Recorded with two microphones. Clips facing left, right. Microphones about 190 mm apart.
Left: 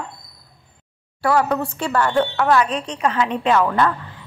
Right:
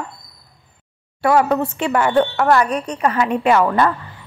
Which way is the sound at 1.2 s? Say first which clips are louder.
Right 3 dB; 20° right (ahead or behind).